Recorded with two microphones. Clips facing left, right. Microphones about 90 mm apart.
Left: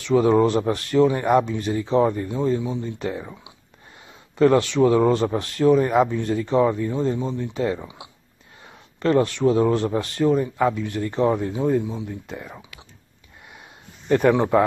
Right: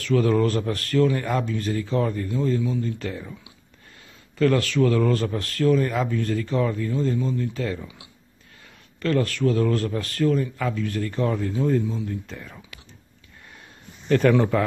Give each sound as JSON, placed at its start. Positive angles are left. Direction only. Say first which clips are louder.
{"t": 0.0, "sound": "speech", "louder": "left 4 dB", "side_deg": 20}
{"t": 14.0, "sound": "speech", "louder": "left 1 dB", "side_deg": 20}